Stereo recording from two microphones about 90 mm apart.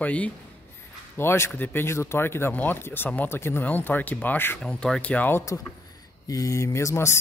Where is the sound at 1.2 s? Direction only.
25° left (ahead or behind).